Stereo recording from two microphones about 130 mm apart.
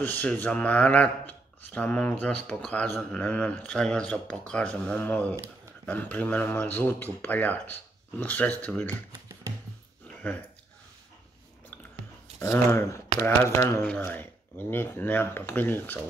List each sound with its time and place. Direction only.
0.0 s a man's voice: 15° left (ahead or behind)
12.4 s a man's voice: 20° left (ahead or behind)